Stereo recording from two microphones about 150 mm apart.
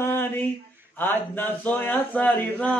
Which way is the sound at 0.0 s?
15° left (ahead or behind).